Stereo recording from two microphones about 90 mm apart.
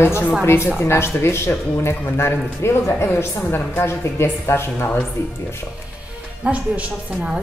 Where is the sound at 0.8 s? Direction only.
30° left (ahead or behind).